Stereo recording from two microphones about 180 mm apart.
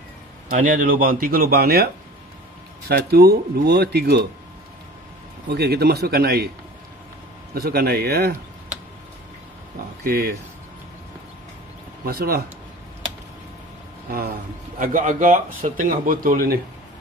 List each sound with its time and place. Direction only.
0.5 s speech: 50° right (ahead or behind)
2.9 s speech: 60° right (ahead or behind)
5.5 s speech: 60° right (ahead or behind)
7.5 s speech: 60° right (ahead or behind)
10.0 s speech: 55° right (ahead or behind)
12.0 s speech: 55° right (ahead or behind)
14.8 s speech: 50° right (ahead or behind)